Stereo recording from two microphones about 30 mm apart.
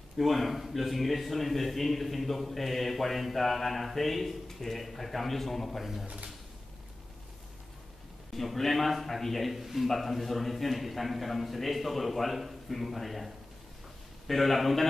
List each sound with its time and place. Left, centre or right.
0.2 s a man's voice: centre
8.4 s a man's voice: centre